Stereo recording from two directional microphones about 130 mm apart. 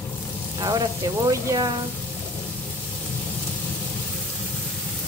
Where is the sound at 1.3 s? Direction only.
25° right (ahead or behind).